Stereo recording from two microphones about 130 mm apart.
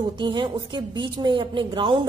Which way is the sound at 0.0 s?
40° right (ahead or behind).